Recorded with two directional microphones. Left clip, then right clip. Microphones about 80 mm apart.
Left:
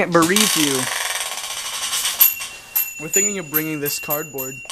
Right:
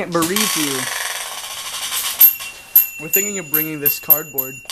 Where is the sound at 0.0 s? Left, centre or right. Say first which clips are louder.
Left 4 dB; left.